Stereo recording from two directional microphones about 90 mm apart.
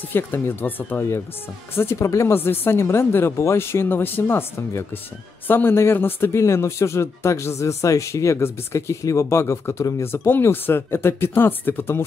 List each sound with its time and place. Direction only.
0.1 s speech: 25° left (ahead or behind)